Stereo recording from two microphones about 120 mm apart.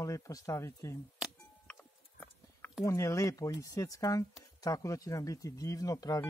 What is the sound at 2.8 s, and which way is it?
Speech, 25° left (ahead or behind).